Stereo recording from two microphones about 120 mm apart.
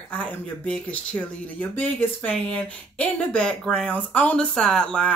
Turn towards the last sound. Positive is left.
turn(degrees=5)  # may be behind; listen again after turning